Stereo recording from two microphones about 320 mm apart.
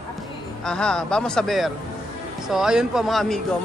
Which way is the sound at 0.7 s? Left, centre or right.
Centre.